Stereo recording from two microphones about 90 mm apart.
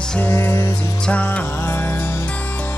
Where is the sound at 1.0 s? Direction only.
15° left (ahead or behind).